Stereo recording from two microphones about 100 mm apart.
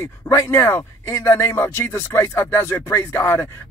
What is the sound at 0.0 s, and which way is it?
Speech, 25° left (ahead or behind).